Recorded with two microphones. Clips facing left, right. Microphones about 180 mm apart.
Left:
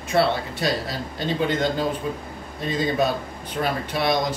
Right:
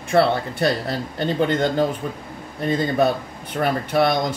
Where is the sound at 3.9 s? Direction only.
55° right (ahead or behind).